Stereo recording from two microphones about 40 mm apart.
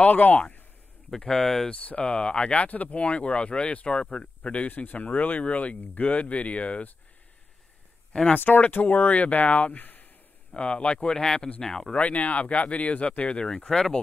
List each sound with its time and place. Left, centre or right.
0.0 s speech: left
1.1 s speech: centre
1.7 s speech: left
4.6 s speech: left
8.4 s speech: left
9.8 s a sound: left
10.5 s speech: left
11.9 s speech: left
13.4 s speech: left